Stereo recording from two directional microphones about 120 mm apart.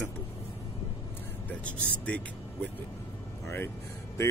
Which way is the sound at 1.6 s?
10° left (ahead or behind).